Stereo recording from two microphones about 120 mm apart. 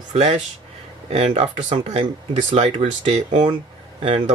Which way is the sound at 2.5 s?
65° right (ahead or behind).